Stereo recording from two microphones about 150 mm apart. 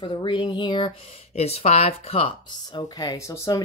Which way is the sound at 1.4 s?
45° left (ahead or behind).